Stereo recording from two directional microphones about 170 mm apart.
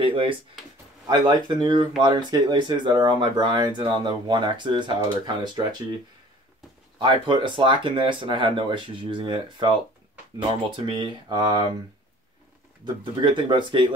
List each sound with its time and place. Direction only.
0.0 s speech: 30° right (ahead or behind)
7.0 s speech: 25° right (ahead or behind)
10.9 s speech: 25° right (ahead or behind)
12.8 s speech: 30° right (ahead or behind)